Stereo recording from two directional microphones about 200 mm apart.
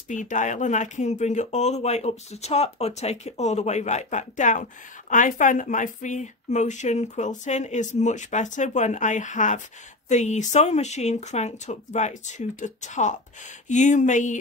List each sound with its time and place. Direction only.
0.1 s speech: 40° left (ahead or behind)